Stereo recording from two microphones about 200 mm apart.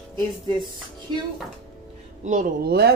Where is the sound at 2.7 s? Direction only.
50° right (ahead or behind).